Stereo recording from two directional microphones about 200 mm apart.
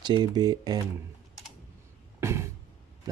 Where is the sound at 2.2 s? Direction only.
15° right (ahead or behind).